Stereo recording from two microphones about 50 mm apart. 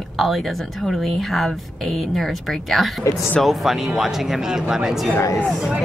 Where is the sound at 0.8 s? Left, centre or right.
Centre.